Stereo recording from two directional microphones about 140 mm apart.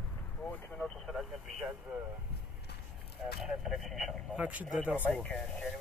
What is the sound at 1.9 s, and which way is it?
Speech, 10° right (ahead or behind).